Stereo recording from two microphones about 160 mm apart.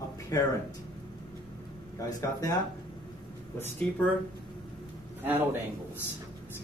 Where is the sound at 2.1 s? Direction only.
20° left (ahead or behind).